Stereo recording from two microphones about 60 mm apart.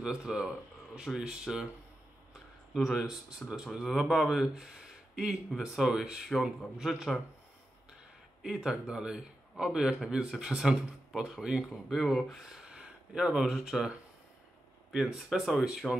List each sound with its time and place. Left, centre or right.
0.0 s speech: centre
2.7 s speech: centre
6.3 s speech: centre
6.8 s speech: centre
8.6 s speech: centre
11.9 s speech: centre
12.4 s a sound: centre
13.3 s speech: centre